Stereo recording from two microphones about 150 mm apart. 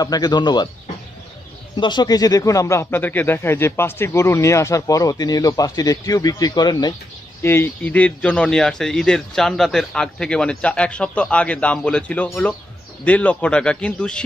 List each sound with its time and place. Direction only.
0.0 s a man's voice: 25° left (ahead or behind)
1.8 s a man's voice: 30° left (ahead or behind)
7.4 s speech: 15° left (ahead or behind)